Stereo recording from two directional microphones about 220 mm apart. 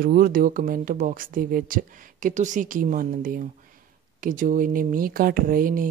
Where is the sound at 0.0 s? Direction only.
40° right (ahead or behind).